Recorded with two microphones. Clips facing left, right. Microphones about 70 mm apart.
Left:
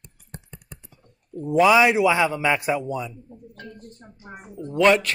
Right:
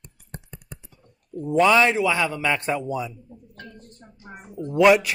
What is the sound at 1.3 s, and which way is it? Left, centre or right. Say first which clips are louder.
A man's voice: left 1 dB; centre.